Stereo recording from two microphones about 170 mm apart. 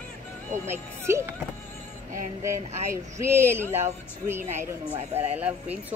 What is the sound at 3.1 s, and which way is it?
Speech, 15° right (ahead or behind).